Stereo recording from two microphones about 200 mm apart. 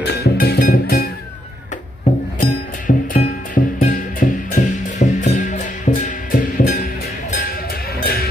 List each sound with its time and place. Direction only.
0.0 s music: 55° left (ahead or behind)
2.1 s music: 30° left (ahead or behind)
2.9 s music: 40° left (ahead or behind)